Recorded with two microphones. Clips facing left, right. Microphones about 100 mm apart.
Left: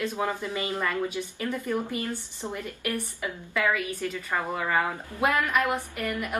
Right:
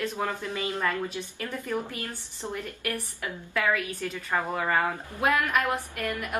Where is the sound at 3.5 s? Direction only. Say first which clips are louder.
Even; 10° left (ahead or behind).